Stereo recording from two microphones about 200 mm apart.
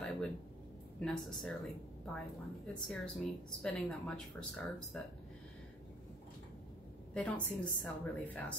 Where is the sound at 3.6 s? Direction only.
5° left (ahead or behind).